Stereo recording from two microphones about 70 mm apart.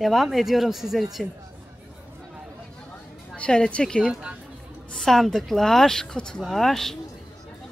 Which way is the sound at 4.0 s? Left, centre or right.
Centre.